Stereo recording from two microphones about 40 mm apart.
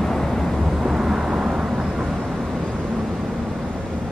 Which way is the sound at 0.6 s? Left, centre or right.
Centre.